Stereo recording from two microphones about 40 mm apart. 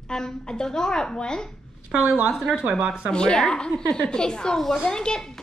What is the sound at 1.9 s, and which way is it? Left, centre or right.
A woman's voice, right.